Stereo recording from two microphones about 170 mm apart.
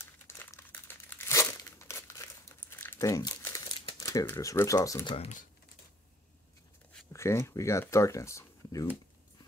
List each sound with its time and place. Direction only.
0.0 s crumpling: 15° left (ahead or behind)
5.1 s speech: 35° left (ahead or behind)
7.1 s speech: 15° left (ahead or behind)